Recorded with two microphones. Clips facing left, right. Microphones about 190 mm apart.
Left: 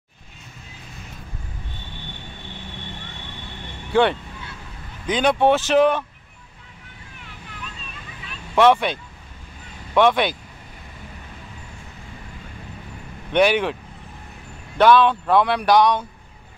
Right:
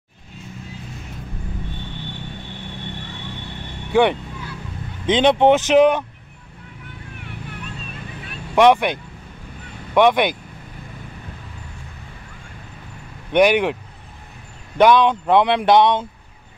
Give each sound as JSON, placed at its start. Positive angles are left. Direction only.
{"t": 3.9, "sound": "speech", "side_deg": -15}
{"t": 7.2, "sound": "vehicle", "side_deg": -60}
{"t": 8.5, "sound": "speech", "side_deg": -15}
{"t": 13.3, "sound": "speech", "side_deg": -15}
{"t": 14.8, "sound": "speech", "side_deg": -15}